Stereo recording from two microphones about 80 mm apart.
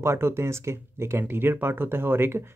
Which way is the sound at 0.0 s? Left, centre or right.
Right.